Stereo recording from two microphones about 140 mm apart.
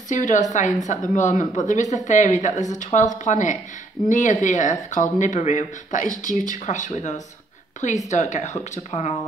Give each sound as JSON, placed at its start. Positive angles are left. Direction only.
{"t": 0.1, "sound": "speech", "side_deg": 65}